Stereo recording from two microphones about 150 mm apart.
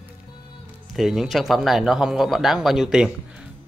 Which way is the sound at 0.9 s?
Centre (ahead or behind).